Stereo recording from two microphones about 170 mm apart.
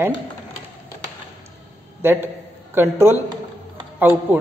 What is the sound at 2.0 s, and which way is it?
A woman's voice, 10° right (ahead or behind).